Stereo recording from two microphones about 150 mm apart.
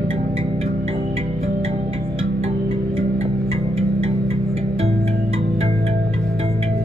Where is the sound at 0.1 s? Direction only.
40° right (ahead or behind).